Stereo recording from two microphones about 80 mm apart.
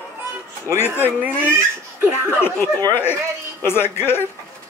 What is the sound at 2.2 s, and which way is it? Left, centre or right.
Speech, left.